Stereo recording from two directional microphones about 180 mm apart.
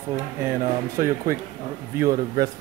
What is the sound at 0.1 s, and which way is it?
Speech, 15° right (ahead or behind).